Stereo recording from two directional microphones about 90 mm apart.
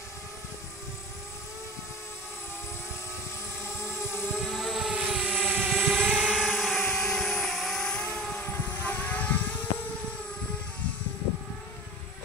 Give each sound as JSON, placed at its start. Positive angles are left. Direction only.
{"t": 4.3, "sound": "vehicle", "side_deg": 0}
{"t": 6.3, "sound": "vehicle", "side_deg": 0}
{"t": 8.8, "sound": "vehicle", "side_deg": 20}